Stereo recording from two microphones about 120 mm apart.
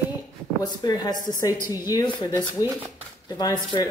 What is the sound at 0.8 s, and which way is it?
Speech, 35° left (ahead or behind).